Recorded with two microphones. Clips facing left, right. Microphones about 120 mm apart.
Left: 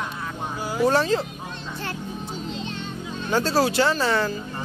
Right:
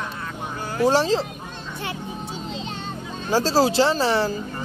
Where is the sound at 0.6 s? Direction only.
5° left (ahead or behind).